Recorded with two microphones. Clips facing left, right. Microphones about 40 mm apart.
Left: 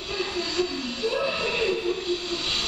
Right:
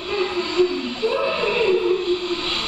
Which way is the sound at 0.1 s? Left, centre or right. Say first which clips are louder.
Right 6 dB; right.